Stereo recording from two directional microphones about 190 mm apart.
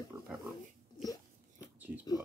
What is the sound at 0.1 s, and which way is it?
Pig, 15° right (ahead or behind).